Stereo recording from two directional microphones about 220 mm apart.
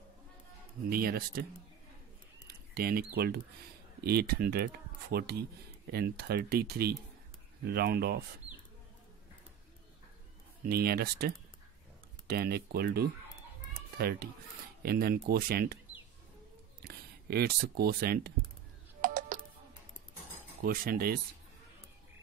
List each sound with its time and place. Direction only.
0.8 s speech: 45° right (ahead or behind)
2.4 s a sound: 45° right (ahead or behind)
4.0 s speech: 45° right (ahead or behind)
10.7 s speech: 45° right (ahead or behind)
16.8 s speech: 45° right (ahead or behind)
18.9 s music: 35° right (ahead or behind)
20.6 s speech: 40° right (ahead or behind)